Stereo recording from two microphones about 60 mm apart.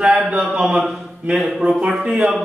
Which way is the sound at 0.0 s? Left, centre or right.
Centre.